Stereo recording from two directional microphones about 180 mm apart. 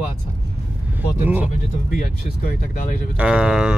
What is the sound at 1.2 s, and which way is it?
Speech, 10° right (ahead or behind).